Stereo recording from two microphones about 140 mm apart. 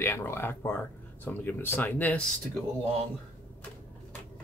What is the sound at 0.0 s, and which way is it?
Speech, 20° left (ahead or behind).